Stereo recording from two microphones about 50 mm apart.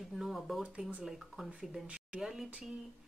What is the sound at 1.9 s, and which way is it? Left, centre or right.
Speech, right.